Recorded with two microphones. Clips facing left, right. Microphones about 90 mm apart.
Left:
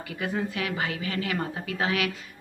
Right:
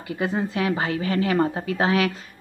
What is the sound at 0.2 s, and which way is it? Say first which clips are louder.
A woman's voice: right 5 dB; 30° right (ahead or behind).